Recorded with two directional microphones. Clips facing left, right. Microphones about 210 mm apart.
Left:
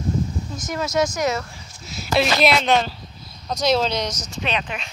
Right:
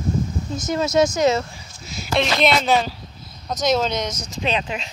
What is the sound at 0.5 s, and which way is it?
Speech, 25° right (ahead or behind).